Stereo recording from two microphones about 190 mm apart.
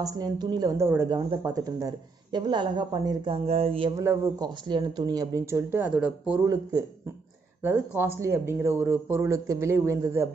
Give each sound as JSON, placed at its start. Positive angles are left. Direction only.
{"t": 0.0, "sound": "a woman's voice", "side_deg": -20}
{"t": 3.9, "sound": "speech", "side_deg": -15}
{"t": 6.4, "sound": "a woman's voice", "side_deg": -20}